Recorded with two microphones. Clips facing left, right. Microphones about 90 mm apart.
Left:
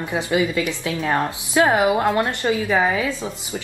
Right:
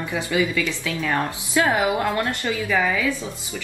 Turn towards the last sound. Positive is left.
turn(degrees=20)  # may be behind; listen again after turning